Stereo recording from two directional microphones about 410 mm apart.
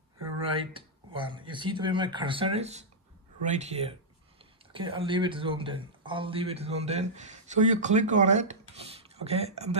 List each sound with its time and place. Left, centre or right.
0.4 s speech: centre